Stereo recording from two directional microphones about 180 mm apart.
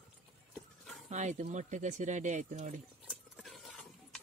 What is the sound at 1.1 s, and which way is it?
Speech, 40° right (ahead or behind).